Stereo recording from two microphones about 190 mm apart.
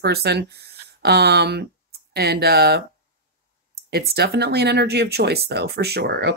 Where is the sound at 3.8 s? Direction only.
55° right (ahead or behind).